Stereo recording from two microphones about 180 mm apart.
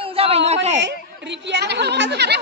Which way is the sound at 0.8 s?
75° right (ahead or behind).